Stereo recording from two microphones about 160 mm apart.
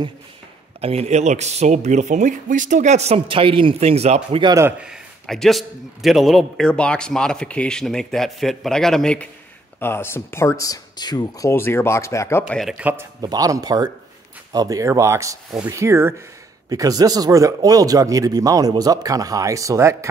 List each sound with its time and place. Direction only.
0.7 s speech: 40° right (ahead or behind)
4.6 s a man's voice: 10° right (ahead or behind); by 12.4 s 15° left (ahead or behind)
12.4 s a man's voice: centre (ahead or behind)
12.7 s speech: 10° right (ahead or behind)
13.2 s speech: 25° right (ahead or behind)